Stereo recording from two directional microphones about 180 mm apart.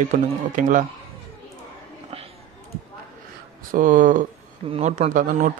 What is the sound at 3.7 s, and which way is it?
Speech, 50° right (ahead or behind).